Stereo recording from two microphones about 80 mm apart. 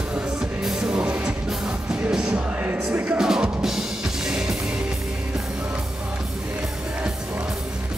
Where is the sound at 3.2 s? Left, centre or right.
Centre.